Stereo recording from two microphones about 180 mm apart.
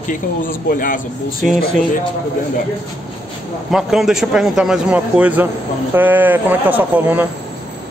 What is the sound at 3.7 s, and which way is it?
A man's voice, centre (ahead or behind).